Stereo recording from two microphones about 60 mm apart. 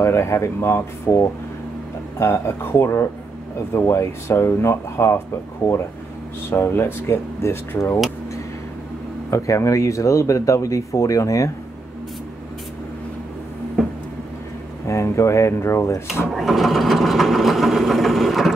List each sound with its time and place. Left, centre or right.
0.0 s speech: left
6.5 s speech: left
9.3 s speech: left
14.9 s speech: left
16.3 s sewing machine: centre